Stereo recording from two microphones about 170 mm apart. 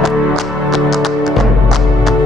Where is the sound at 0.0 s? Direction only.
Centre (ahead or behind).